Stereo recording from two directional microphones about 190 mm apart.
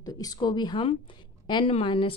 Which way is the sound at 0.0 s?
20° left (ahead or behind).